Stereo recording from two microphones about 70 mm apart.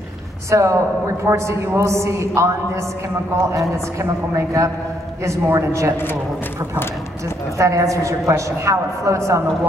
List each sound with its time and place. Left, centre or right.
0.5 s a woman's voice: right
7.5 s a woman's voice: right